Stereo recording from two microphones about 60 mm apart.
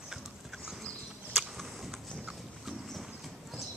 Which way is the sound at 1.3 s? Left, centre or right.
Centre.